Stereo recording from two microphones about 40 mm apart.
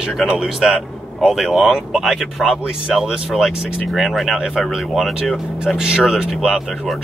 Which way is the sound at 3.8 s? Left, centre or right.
Centre.